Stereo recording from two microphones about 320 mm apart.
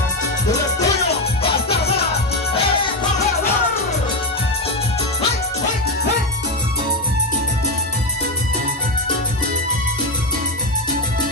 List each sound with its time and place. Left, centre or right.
0.5 s music: centre